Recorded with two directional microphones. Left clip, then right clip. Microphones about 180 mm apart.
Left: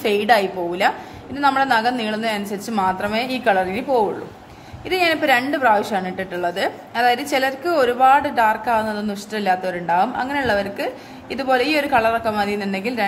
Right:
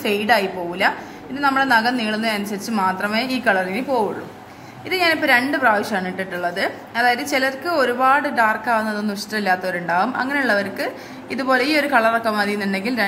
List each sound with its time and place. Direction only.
0.0 s a woman's voice: 30° left (ahead or behind)